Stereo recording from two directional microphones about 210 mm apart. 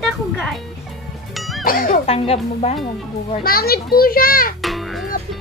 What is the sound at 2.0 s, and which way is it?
Speech, 30° left (ahead or behind).